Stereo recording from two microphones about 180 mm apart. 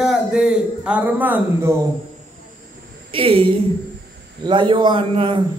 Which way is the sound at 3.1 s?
30° right (ahead or behind).